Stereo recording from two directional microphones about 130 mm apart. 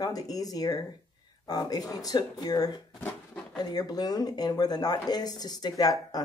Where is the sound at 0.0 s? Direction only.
30° left (ahead or behind).